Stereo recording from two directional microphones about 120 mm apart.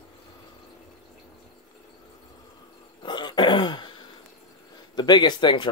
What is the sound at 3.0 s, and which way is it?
Throat clearing, 40° left (ahead or behind).